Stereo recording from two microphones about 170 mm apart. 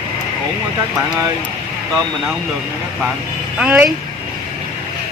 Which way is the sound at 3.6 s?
5° right (ahead or behind).